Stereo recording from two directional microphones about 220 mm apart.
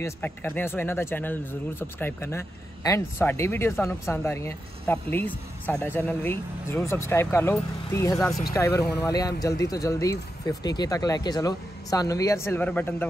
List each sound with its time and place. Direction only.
0.0 s speech: 10° left (ahead or behind)